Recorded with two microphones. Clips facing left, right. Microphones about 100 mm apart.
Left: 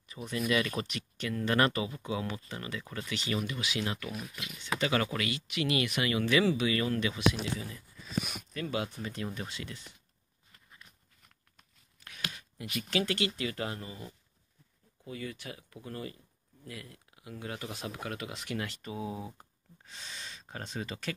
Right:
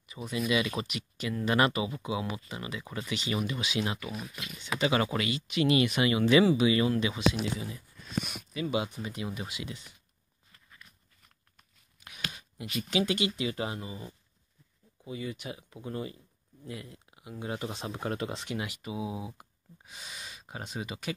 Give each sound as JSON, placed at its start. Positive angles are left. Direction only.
{"t": 0.1, "sound": "speech", "side_deg": -5}
{"t": 8.0, "sound": "speech", "side_deg": 0}
{"t": 8.6, "sound": "speech", "side_deg": -15}
{"t": 12.0, "sound": "a sound", "side_deg": -15}
{"t": 12.9, "sound": "speech", "side_deg": -15}
{"t": 15.0, "sound": "speech", "side_deg": -20}
{"t": 18.6, "sound": "speech", "side_deg": -10}